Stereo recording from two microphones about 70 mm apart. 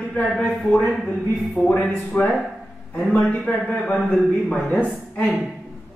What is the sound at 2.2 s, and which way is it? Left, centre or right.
Speech, left.